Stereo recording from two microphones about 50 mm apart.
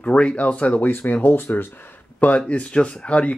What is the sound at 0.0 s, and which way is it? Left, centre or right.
Speech, left.